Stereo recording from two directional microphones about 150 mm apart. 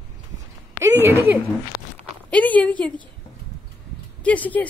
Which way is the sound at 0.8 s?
15° right (ahead or behind).